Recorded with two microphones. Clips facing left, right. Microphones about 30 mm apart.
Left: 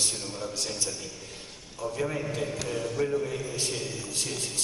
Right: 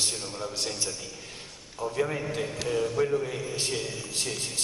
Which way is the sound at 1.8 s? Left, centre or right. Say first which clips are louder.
Right 2 dB; centre.